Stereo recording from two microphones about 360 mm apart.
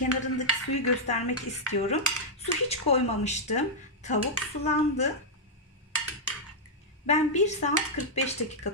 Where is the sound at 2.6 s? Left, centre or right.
Centre.